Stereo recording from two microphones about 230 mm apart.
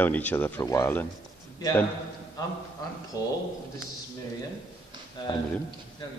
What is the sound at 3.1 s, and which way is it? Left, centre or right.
Speech, centre.